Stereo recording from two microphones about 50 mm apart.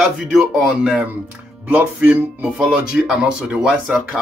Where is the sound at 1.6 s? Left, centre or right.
Right.